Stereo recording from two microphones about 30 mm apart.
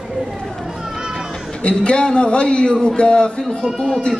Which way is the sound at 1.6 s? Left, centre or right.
Left.